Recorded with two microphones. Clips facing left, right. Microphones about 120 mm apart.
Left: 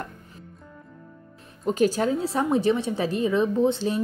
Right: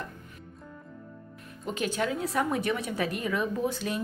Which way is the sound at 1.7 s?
40° left (ahead or behind).